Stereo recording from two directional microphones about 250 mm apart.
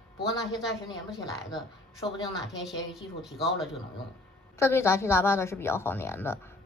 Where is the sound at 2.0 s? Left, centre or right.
Centre.